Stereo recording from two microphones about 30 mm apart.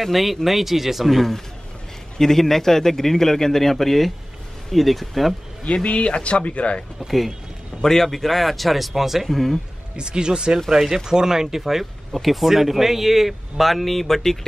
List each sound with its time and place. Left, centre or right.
0.0 s speech: centre
2.1 s a man's voice: centre
5.9 s speech: left
7.0 s speech: centre
7.8 s speech: centre
9.3 s speech: centre
9.9 s speech: right; by 14.4 s centre